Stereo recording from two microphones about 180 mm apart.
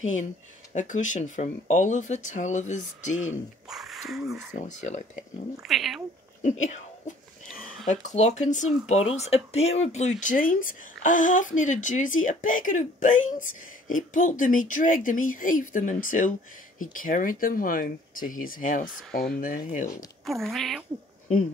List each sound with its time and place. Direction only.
0.0 s speech: 45° left (ahead or behind)
3.6 s speech: centre (ahead or behind)
4.6 s speech: 40° left (ahead or behind)
5.6 s speech: centre (ahead or behind)
6.4 s speech: 40° left (ahead or behind)
20.2 s speech: centre (ahead or behind)